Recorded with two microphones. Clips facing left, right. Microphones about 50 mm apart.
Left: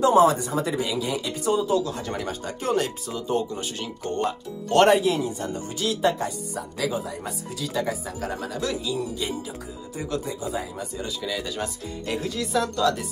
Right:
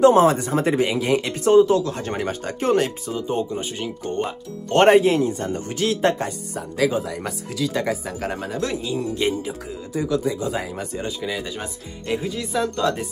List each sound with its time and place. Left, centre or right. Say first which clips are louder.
0.0 s speech: right 3 dB; right
3.2 s speech: right 1 dB; right
10.4 s speech: right 4 dB; right
11.0 s speech: right 2 dB; right